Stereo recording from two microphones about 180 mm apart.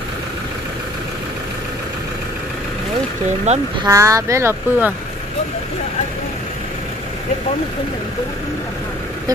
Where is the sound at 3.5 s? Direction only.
40° right (ahead or behind).